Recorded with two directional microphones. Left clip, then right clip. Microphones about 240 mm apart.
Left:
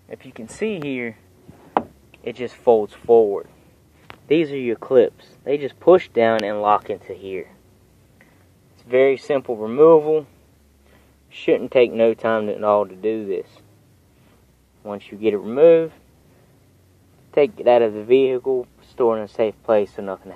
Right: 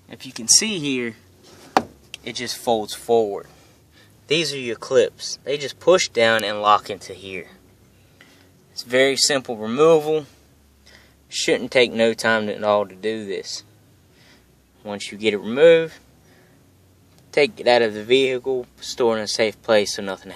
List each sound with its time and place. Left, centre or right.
0.1 s speech: centre
2.2 s speech: centre
8.8 s speech: right
11.3 s speech: centre
14.8 s speech: right
17.3 s speech: centre